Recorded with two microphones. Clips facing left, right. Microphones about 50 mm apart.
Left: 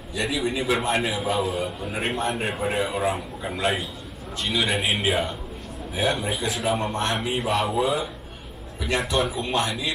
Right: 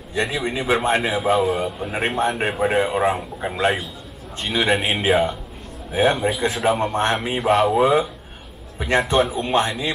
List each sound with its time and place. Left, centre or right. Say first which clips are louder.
0.1 s a man's voice: right 3 dB; right